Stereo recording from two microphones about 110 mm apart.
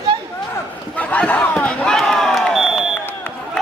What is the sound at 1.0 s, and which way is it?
Crowd, 15° left (ahead or behind).